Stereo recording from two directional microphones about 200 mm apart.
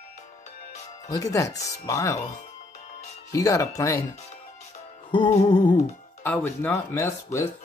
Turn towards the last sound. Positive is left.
turn(degrees=15)  # may be behind; listen again after turning